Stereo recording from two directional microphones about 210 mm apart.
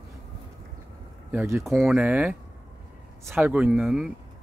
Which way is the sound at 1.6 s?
Centre (ahead or behind).